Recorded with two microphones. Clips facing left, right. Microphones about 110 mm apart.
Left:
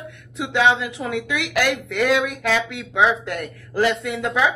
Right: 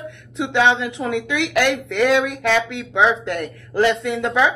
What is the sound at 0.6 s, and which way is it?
A woman's voice, 5° left (ahead or behind).